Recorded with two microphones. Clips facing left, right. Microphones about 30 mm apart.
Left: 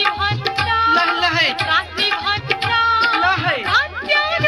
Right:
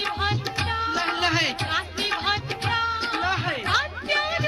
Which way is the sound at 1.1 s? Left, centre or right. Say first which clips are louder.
Left 6 dB; left.